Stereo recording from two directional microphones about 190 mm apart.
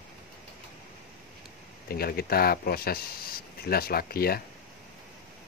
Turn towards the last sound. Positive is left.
turn(degrees=55)  # may be behind; listen again after turning